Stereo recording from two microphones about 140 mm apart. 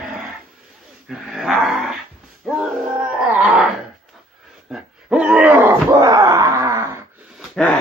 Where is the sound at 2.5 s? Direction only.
5° right (ahead or behind).